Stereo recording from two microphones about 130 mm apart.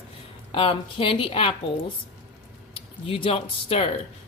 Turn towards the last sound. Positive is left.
turn(degrees=50)  # may be behind; listen again after turning